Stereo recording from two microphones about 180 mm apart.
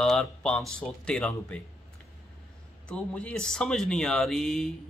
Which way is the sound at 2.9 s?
5° left (ahead or behind).